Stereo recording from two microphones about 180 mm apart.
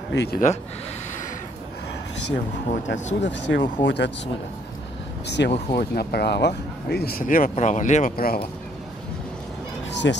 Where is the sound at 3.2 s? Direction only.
80° left.